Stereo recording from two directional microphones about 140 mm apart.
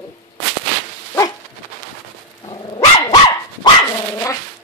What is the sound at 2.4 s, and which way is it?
Dog, 30° left (ahead or behind).